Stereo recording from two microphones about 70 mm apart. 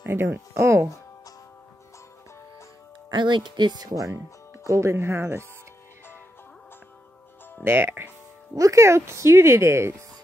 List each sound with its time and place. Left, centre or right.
0.0 s speech: right
3.2 s speech: right
4.6 s speech: right
7.6 s speech: right
8.5 s speech: right